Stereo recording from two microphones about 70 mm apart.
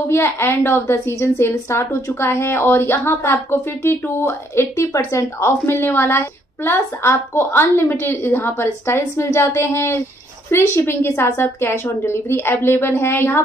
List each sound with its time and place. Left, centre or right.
0.1 s speech: left